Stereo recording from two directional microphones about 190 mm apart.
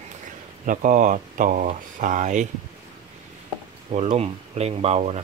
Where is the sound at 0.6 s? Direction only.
40° right (ahead or behind).